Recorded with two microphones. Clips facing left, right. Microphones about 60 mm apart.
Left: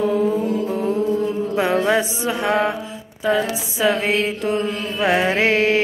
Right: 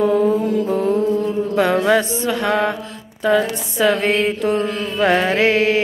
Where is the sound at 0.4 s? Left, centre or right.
Centre.